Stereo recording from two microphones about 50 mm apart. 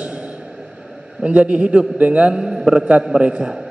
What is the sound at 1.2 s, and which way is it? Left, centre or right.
Mantra, right.